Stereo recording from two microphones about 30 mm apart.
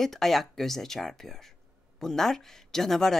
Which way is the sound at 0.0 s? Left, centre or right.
Centre.